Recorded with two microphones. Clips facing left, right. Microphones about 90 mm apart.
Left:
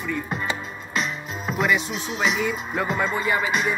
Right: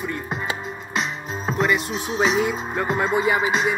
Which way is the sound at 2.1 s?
30° right (ahead or behind).